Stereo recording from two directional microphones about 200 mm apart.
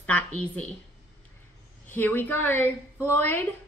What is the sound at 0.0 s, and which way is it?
Speech, 10° left (ahead or behind).